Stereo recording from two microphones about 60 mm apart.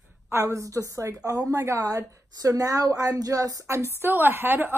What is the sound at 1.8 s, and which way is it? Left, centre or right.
Speech, right.